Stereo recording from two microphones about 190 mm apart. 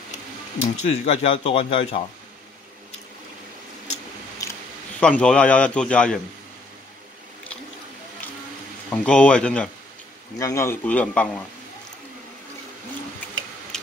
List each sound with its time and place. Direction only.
0.8 s speech: 35° left (ahead or behind)
4.4 s a sound: 15° left (ahead or behind)
5.0 s a man's voice: 5° left (ahead or behind)
8.9 s a man's voice: 5° left (ahead or behind)